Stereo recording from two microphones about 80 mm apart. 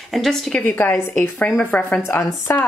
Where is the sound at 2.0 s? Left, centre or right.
Left.